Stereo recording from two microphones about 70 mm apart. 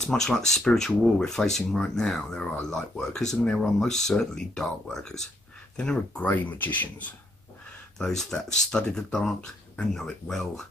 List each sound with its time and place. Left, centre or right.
0.0 s speech: centre
6.2 s speech: left
8.0 s speech: centre